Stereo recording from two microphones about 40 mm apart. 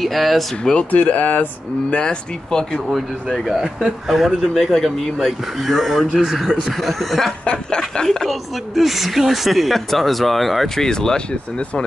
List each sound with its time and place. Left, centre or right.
0.0 s speech: centre
0.9 s speech: left
2.0 s speech: centre
3.3 s speech: centre
3.8 s speech: centre
7.4 s speech: left
8.3 s speech: centre
10.8 s speech: centre